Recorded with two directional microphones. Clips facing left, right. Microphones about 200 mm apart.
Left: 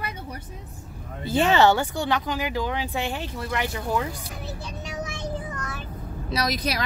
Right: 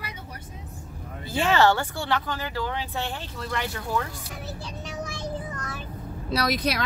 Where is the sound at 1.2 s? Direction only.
20° left (ahead or behind).